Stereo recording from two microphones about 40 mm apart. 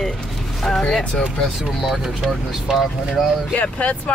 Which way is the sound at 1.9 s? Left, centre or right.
Centre.